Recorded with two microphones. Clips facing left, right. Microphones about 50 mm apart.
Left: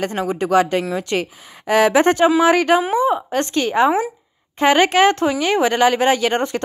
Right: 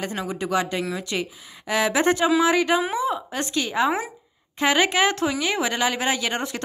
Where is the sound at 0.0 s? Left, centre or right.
Left.